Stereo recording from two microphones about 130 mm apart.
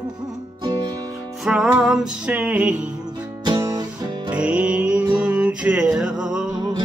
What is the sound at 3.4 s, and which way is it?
Music, 30° right (ahead or behind).